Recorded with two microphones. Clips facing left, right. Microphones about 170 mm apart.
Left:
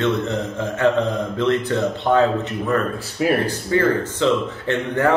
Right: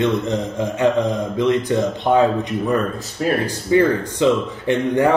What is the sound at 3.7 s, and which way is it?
A man's voice, 15° right (ahead or behind).